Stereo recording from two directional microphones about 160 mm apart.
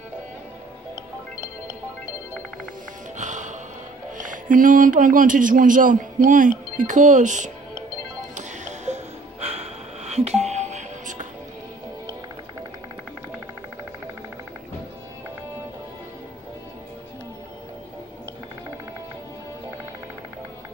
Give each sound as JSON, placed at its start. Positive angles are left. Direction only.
{"t": 3.2, "sound": "music", "side_deg": -50}
{"t": 4.2, "sound": "speech", "side_deg": -55}
{"t": 8.4, "sound": "music", "side_deg": -45}